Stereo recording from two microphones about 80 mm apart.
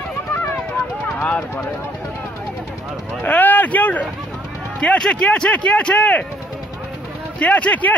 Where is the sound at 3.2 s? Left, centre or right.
Left.